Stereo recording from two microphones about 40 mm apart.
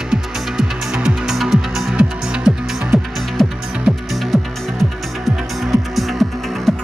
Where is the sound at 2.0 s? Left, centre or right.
Right.